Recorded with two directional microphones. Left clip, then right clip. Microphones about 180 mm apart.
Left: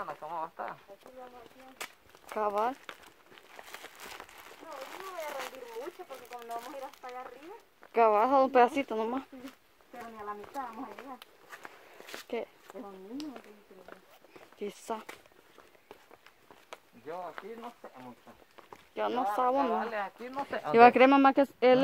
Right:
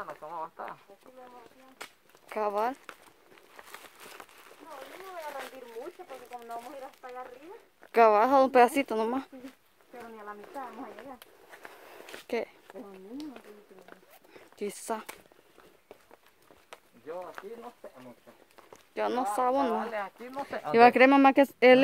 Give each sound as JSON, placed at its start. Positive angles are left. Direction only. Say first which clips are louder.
{"t": 0.0, "sound": "a sound", "louder": "left 1 dB", "side_deg": 35}
{"t": 2.2, "sound": "speech", "louder": "right 1 dB", "side_deg": -15}
{"t": 4.9, "sound": "speech", "louder": "left 1 dB", "side_deg": 55}
{"t": 7.0, "sound": "speech", "louder": "even", "side_deg": -5}
{"t": 7.9, "sound": "a woman's voice", "louder": "right 3 dB", "side_deg": -25}
{"t": 12.7, "sound": "speech", "louder": "even", "side_deg": -5}
{"t": 14.6, "sound": "a woman's voice", "louder": "right 3 dB", "side_deg": -25}
{"t": 17.4, "sound": "speech", "louder": "even", "side_deg": -15}
{"t": 18.9, "sound": "a woman's voice", "louder": "right 1 dB", "side_deg": -25}
{"t": 19.9, "sound": "speech", "louder": "even", "side_deg": -5}
{"t": 21.1, "sound": "speech", "louder": "right 2 dB", "side_deg": -25}